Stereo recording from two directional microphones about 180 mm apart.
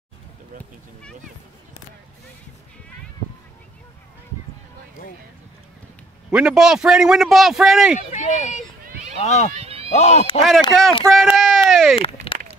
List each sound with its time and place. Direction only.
6.3 s a man's voice: 5° right (ahead or behind)
8.1 s speech: 40° left (ahead or behind)
9.6 s music: 35° right (ahead or behind)
9.9 s speech: 40° left (ahead or behind)
10.7 s a man's voice: centre (ahead or behind)
11.1 s a sound: centre (ahead or behind)
12.0 s a sound: 30° left (ahead or behind)